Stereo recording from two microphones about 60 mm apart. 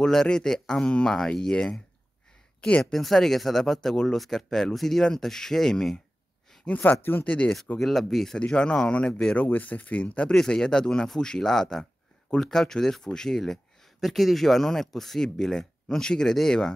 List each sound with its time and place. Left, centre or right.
0.0 s speech: centre
6.6 s speech: left
7.2 s speech: centre
7.8 s speech: centre
8.4 s speech: centre
9.4 s speech: left
10.3 s speech: centre